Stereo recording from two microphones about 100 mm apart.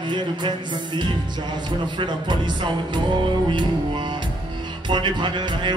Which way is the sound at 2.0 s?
50° right (ahead or behind).